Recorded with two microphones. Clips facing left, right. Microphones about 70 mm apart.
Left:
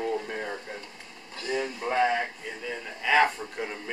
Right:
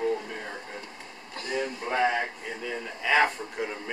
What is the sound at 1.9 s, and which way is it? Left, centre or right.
Speech, centre.